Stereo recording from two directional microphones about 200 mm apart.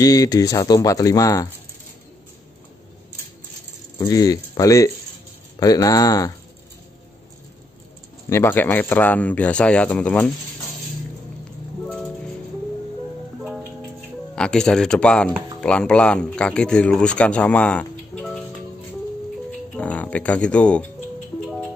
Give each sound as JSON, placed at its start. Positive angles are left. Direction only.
{"t": 0.0, "sound": "speech", "side_deg": 20}
{"t": 4.0, "sound": "speech", "side_deg": 15}
{"t": 8.3, "sound": "speech", "side_deg": 10}
{"t": 14.3, "sound": "a man's voice", "side_deg": 5}
{"t": 19.7, "sound": "speech", "side_deg": 5}